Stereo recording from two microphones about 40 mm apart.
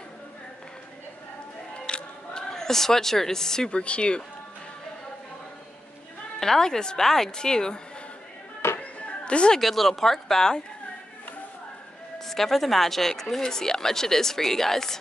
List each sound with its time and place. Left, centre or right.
1.9 s a sound: left
3.8 s speech: left
6.4 s speech: centre
8.6 s music: left
9.0 s music: left
9.6 s speech: centre
12.3 s speech: centre